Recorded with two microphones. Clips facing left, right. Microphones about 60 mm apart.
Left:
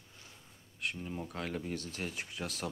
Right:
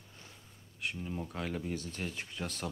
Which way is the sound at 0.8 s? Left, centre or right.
Centre.